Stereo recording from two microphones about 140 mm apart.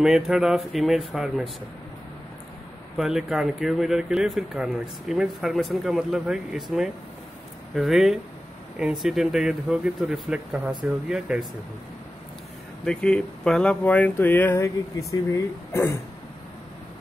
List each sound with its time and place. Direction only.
0.0 s speech: 5° right (ahead or behind)
3.0 s speech: 5° right (ahead or behind)
12.8 s speech: 5° left (ahead or behind)